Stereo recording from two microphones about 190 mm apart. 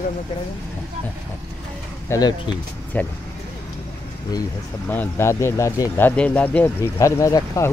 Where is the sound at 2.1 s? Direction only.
20° left (ahead or behind).